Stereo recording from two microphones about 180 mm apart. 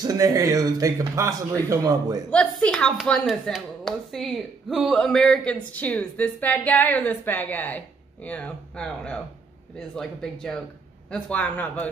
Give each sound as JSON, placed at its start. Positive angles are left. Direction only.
{"t": 0.0, "sound": "speech", "side_deg": -20}
{"t": 2.3, "sound": "a woman's voice", "side_deg": 5}